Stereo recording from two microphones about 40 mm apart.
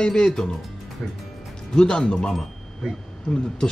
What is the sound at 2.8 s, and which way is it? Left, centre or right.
Speech, right.